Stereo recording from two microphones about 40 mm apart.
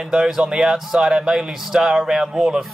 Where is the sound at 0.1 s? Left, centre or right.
Centre.